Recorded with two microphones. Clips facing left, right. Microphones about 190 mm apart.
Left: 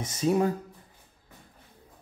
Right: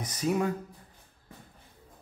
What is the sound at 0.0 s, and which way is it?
Speech, 25° left (ahead or behind).